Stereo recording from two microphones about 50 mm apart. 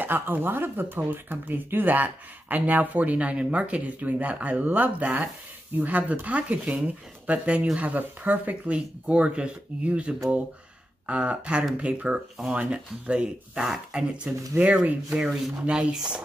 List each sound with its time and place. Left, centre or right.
0.0 s speech: right
8.7 s speech: right
14.6 s speech: right
15.0 s speech: centre